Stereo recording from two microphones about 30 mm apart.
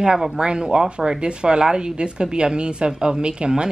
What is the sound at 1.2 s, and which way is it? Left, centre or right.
A woman's voice, right.